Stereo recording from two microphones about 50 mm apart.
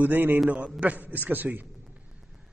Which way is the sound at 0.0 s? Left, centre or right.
Right.